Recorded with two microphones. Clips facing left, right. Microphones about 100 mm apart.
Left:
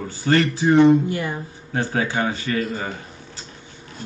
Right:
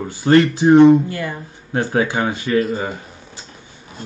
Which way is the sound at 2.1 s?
25° right (ahead or behind).